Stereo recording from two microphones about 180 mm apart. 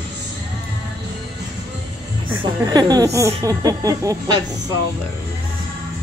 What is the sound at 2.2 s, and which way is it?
Speech, 20° right (ahead or behind).